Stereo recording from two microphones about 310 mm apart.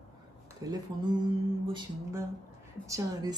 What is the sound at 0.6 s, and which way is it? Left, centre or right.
Music, centre.